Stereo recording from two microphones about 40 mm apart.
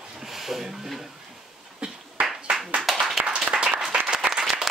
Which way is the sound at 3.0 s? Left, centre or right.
Centre.